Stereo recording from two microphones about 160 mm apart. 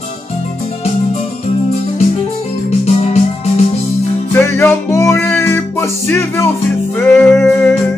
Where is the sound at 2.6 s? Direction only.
45° left (ahead or behind).